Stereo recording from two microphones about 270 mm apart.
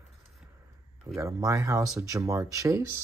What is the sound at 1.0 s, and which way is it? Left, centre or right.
Speech, centre.